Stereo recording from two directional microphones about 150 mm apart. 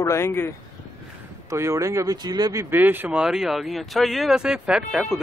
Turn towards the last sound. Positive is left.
turn(degrees=-5)  # may be behind; listen again after turning